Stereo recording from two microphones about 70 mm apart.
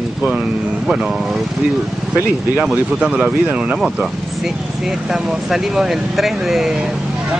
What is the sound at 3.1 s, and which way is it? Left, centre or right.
Speech, right.